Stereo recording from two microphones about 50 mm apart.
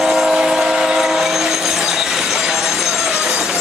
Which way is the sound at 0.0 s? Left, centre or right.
Centre.